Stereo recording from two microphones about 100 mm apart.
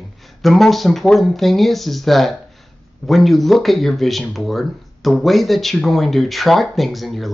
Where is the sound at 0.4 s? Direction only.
Centre (ahead or behind).